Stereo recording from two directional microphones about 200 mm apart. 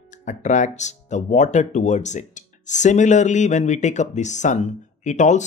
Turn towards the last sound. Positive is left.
turn(degrees=35)  # may be behind; listen again after turning